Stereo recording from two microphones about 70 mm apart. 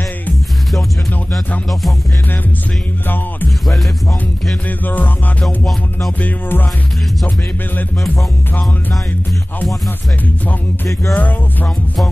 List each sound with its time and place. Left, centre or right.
1.7 s music: centre
3.4 s music: centre
4.6 s music: left
6.2 s music: left
11.1 s music: left